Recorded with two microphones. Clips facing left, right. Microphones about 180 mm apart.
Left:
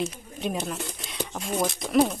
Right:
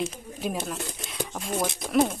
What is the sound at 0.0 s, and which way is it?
Speech, 5° right (ahead or behind).